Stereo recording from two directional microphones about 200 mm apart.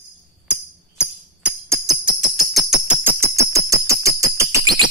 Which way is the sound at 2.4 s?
Centre (ahead or behind).